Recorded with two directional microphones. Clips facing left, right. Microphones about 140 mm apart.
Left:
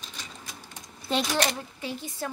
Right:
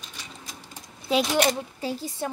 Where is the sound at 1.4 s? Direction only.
35° right (ahead or behind).